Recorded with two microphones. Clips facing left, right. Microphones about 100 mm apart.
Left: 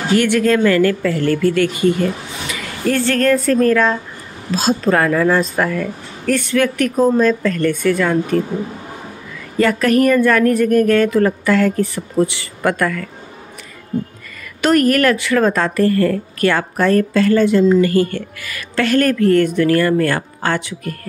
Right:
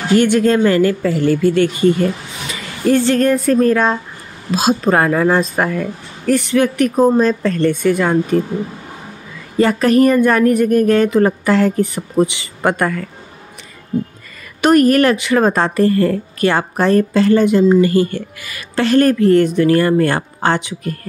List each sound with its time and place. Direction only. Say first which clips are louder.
0.2 s speech: right 1 dB; 25° right (ahead or behind)
1.5 s speech: right 2 dB; 30° right (ahead or behind)
2.9 s speech: right 2 dB; 20° right (ahead or behind)
9.6 s speech: right 2 dB; 20° right (ahead or behind)
14.6 s speech: right 3 dB; 20° right (ahead or behind)